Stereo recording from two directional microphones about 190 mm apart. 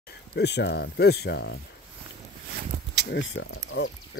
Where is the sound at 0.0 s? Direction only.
60° left (ahead or behind).